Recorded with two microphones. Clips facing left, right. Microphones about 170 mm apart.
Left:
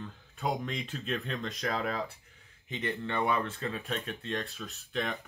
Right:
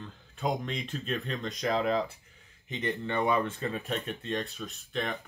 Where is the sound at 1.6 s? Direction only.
20° right (ahead or behind).